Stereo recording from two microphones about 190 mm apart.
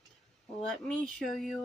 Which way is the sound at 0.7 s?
Centre (ahead or behind).